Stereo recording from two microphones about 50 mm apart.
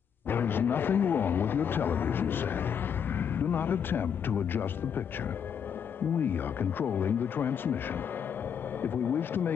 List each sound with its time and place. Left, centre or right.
0.3 s speech: left
6.1 s speech: left
8.8 s speech: left